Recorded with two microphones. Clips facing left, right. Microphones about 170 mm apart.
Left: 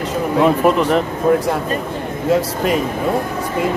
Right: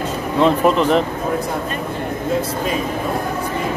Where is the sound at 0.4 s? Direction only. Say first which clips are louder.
Even; 5° left (ahead or behind).